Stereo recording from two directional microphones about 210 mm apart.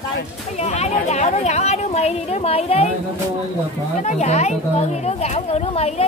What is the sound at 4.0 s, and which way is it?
Speech, 35° left (ahead or behind).